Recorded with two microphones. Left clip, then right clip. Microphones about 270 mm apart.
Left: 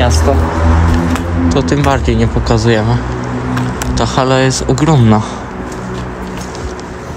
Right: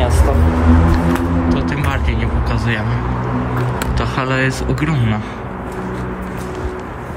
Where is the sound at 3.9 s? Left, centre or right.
Centre.